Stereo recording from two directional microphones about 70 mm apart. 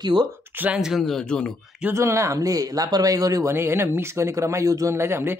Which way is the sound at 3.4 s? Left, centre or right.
Right.